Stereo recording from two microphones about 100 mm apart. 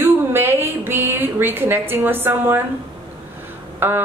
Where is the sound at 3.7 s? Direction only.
20° right (ahead or behind).